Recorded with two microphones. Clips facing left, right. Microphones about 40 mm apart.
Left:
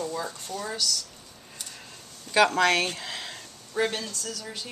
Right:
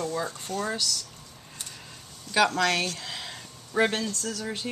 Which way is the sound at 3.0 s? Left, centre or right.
Centre.